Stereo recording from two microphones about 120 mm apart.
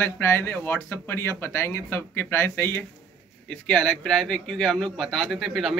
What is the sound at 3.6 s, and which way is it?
A man's voice, 5° left (ahead or behind).